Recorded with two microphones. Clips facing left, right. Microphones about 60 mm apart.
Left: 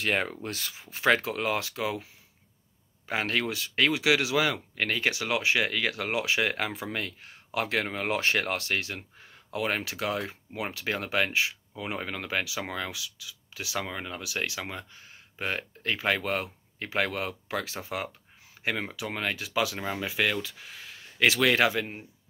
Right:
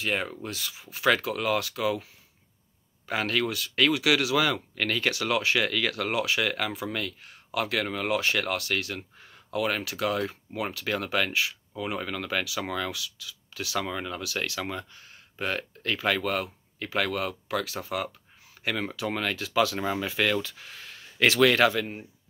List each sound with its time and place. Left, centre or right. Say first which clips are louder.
0.0 s speech: left 1 dB; left
3.1 s speech: right 1 dB; left
18.9 s speech: right 2 dB; centre